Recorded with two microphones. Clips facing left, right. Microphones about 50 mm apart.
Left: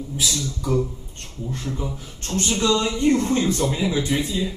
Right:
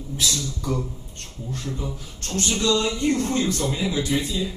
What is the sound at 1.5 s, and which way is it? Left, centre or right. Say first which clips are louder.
Speech: left 1 dB; left.